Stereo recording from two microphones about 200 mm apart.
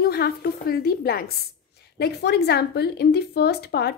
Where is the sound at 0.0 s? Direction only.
50° left (ahead or behind).